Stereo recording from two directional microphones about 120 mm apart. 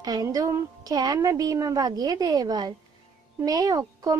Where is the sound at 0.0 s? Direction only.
30° right (ahead or behind).